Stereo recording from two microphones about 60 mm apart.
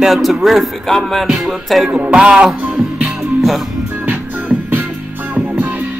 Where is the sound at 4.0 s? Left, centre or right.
Right.